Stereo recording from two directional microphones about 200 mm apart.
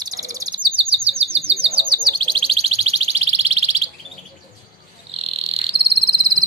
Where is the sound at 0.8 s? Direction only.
30° right (ahead or behind).